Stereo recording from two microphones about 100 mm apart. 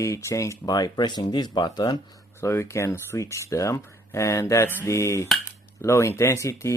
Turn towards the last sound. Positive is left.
turn(degrees=30)  # may be behind; listen again after turning